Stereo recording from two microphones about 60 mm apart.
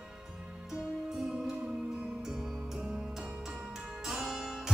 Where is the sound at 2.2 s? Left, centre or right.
Centre.